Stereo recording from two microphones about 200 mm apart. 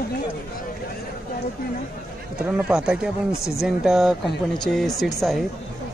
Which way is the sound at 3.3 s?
15° left (ahead or behind).